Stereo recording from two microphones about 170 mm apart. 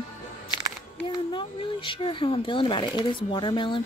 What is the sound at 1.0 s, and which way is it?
Speech, 30° left (ahead or behind).